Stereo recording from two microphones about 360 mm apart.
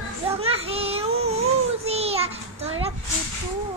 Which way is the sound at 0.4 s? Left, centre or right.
Centre.